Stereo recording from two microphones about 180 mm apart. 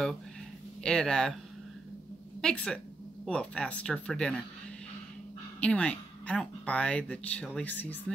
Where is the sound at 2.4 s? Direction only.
5° left (ahead or behind).